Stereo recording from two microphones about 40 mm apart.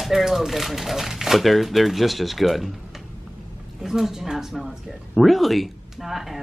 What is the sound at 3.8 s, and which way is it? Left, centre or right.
Speech, centre.